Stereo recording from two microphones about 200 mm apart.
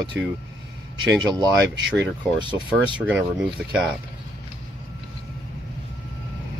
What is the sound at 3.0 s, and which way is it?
Speech, 5° right (ahead or behind).